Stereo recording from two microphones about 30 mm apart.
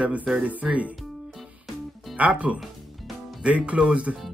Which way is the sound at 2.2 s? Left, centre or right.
Right.